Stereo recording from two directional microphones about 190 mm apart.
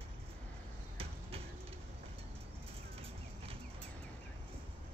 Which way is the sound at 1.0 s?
30° right (ahead or behind).